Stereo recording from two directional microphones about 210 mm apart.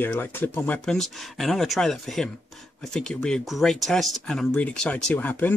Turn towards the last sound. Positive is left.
turn(degrees=10)  # may be behind; listen again after turning